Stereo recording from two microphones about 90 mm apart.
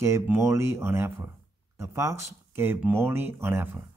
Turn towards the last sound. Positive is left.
turn(degrees=-25)  # may be behind; listen again after turning